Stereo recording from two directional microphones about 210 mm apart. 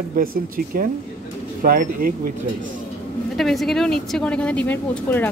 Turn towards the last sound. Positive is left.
turn(degrees=10)  # may be behind; listen again after turning